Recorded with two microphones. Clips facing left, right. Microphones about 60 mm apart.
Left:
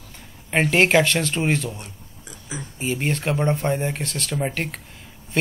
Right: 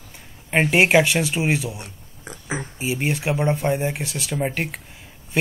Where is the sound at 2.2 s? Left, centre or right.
Right.